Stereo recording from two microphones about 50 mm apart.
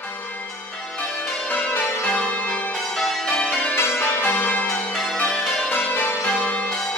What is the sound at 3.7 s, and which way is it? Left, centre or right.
Change ringing, left.